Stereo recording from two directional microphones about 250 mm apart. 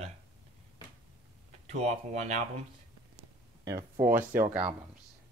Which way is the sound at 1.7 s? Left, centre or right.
Right.